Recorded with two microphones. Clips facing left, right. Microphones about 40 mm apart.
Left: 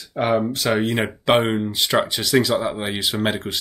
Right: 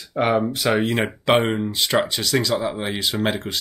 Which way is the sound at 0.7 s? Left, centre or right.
Centre.